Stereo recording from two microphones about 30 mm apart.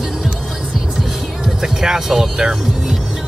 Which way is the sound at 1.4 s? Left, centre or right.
Centre.